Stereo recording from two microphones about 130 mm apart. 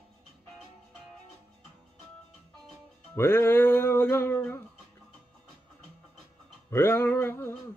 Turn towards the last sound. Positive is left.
turn(degrees=20)  # may be behind; listen again after turning